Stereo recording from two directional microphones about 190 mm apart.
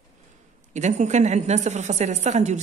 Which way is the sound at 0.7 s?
40° right (ahead or behind).